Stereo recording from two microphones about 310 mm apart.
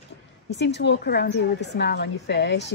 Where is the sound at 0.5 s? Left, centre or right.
Left.